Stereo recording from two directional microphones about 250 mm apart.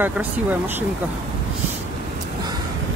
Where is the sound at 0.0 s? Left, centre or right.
Centre.